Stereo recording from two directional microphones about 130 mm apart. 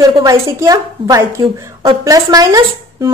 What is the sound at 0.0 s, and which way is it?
Speech, 30° right (ahead or behind).